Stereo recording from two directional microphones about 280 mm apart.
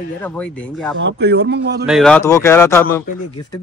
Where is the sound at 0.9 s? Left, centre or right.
Right.